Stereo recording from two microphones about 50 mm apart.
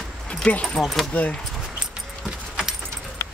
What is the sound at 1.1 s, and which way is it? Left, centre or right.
Speech, left.